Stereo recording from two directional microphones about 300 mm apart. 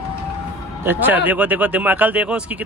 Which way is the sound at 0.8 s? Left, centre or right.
Centre.